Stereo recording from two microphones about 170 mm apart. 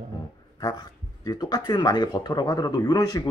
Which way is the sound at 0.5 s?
25° left (ahead or behind).